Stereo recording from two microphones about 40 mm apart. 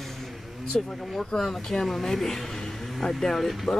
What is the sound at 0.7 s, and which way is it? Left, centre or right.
Speech, centre.